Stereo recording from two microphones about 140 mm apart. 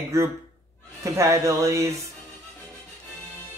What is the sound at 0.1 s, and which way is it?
Speech, 20° right (ahead or behind).